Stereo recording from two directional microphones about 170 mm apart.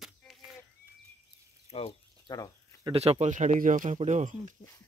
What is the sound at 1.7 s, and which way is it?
Speech, 35° left (ahead or behind).